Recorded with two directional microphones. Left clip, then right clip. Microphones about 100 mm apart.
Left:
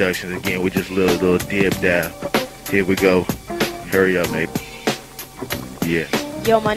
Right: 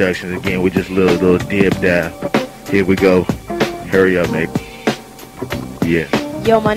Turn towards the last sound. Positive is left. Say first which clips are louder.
# right 3 dB
turn(degrees=-30)  # may be behind; listen again after turning